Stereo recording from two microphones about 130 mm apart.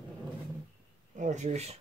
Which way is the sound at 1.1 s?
65° right (ahead or behind).